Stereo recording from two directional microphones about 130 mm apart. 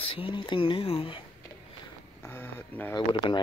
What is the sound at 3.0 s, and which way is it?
Speech, 35° left (ahead or behind).